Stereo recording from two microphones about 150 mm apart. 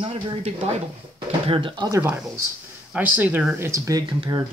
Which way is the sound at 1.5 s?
35° right (ahead or behind).